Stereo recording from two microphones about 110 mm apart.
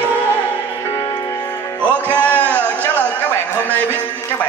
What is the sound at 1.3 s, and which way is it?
Music, 30° left (ahead or behind).